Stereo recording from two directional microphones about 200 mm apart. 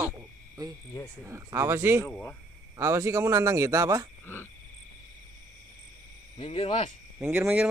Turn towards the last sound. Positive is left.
turn(degrees=-10)  # may be behind; listen again after turning